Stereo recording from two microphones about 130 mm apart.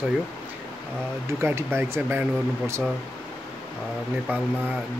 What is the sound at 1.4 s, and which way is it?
Speech, 20° right (ahead or behind).